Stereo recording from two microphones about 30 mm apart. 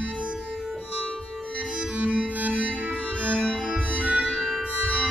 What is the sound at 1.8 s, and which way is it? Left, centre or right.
Music, right.